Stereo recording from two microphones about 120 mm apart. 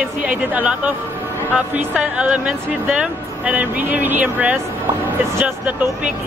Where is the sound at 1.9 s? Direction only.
10° right (ahead or behind).